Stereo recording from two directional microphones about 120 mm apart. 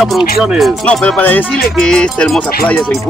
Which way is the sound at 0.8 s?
10° left (ahead or behind).